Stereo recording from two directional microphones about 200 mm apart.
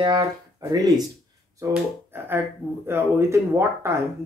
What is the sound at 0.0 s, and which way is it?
Speech, 25° right (ahead or behind).